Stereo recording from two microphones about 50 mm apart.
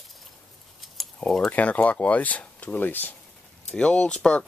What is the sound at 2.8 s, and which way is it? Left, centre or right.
Speech, left.